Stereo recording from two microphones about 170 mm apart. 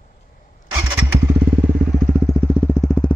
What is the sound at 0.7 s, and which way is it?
Motorcycle, 10° right (ahead or behind).